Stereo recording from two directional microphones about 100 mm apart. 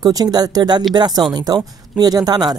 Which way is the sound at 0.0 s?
40° right (ahead or behind).